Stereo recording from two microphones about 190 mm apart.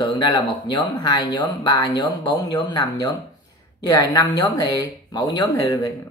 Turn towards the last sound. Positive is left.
turn(degrees=15)  # may be behind; listen again after turning